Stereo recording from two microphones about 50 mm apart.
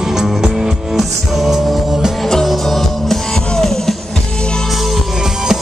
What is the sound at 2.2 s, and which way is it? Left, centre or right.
Music, centre.